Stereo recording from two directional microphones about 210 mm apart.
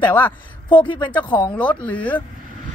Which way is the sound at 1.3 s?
5° left (ahead or behind).